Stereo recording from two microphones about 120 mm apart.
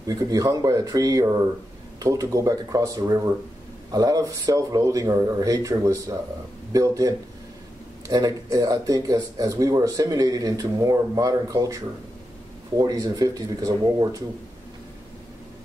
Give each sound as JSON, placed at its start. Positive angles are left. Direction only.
{"t": 0.0, "sound": "speech", "side_deg": -30}